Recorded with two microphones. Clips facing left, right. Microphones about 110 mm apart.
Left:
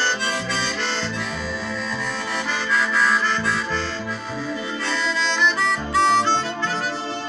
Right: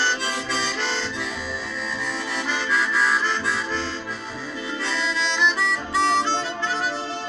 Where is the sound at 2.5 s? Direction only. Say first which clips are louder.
Left 1 dB; 20° right (ahead or behind).